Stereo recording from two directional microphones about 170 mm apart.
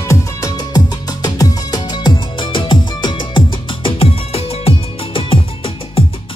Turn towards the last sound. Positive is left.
turn(degrees=35)  # may be behind; listen again after turning